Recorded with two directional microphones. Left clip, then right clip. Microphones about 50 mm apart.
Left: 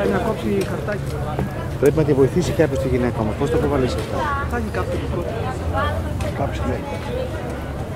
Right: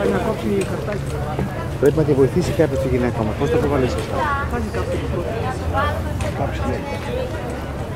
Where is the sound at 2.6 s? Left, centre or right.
Left.